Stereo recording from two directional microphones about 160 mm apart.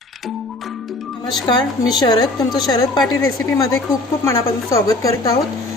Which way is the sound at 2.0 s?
25° left (ahead or behind).